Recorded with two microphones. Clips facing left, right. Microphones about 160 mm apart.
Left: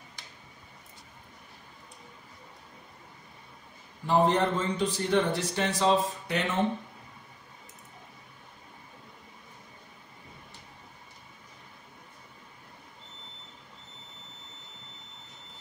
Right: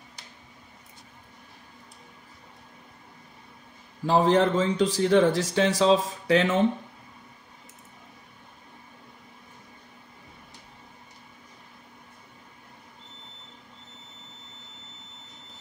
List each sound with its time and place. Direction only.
4.0 s a man's voice: 90° right